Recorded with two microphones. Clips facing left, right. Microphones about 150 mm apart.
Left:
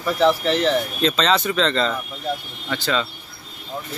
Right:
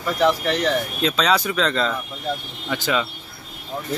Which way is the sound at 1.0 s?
5° right (ahead or behind).